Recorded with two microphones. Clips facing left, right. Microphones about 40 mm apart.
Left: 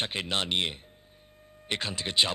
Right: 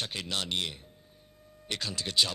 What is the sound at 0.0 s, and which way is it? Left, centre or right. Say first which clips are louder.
Speech: left 4 dB; left.